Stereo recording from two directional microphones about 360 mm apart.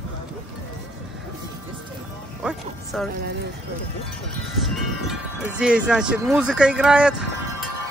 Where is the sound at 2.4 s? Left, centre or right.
Centre.